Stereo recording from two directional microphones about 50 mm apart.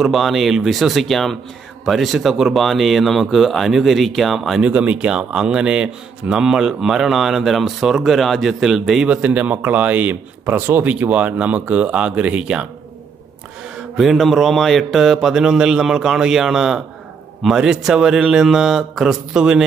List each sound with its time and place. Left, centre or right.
0.0 s speech: centre
4.6 s speech: right; by 9.0 s centre
9.0 s speech: right
13.9 s speech: centre